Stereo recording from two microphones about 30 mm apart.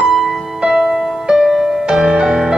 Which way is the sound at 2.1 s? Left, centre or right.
Centre.